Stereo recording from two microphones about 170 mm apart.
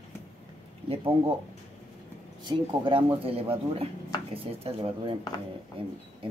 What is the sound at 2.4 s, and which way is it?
Speech, 30° right (ahead or behind).